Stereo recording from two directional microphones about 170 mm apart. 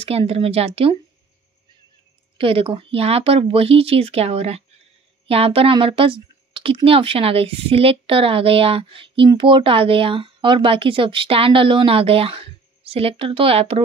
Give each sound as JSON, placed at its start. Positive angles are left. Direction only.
{"t": 0.0, "sound": "speech", "side_deg": -35}
{"t": 2.3, "sound": "speech", "side_deg": -35}